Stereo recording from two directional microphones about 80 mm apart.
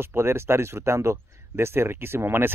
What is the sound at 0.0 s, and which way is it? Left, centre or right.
Speech, right.